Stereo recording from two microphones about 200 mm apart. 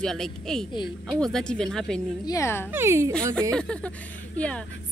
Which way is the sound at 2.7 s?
15° right (ahead or behind).